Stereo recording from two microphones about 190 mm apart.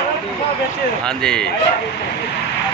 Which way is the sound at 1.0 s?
5° left (ahead or behind).